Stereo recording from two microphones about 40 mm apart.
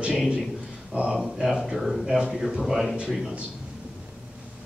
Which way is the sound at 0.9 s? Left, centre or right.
Right.